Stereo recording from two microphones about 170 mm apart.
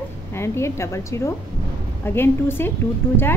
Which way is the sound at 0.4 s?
15° left (ahead or behind).